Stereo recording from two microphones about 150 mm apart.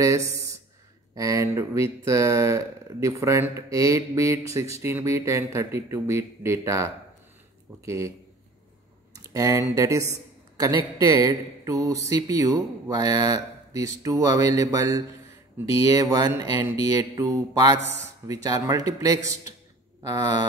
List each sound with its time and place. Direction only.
0.0 s a man's voice: 20° right (ahead or behind)
9.1 s a man's voice: 25° right (ahead or behind)